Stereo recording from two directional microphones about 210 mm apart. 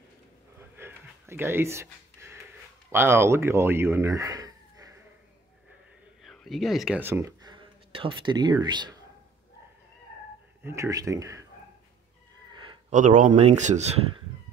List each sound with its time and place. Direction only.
0.7 s a sound: 10° right (ahead or behind)
2.9 s speech: 10° right (ahead or behind)
6.2 s speech: centre (ahead or behind); by 8.9 s 20° right (ahead or behind)
10.6 s speech: 15° right (ahead or behind)
12.9 s speech: 35° right (ahead or behind)